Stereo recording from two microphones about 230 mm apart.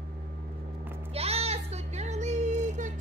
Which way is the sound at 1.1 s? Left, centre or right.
Right.